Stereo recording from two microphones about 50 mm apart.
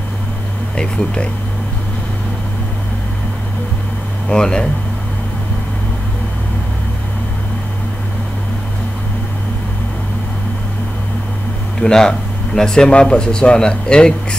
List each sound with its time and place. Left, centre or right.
0.7 s speech: centre
4.3 s speech: centre
11.8 s speech: centre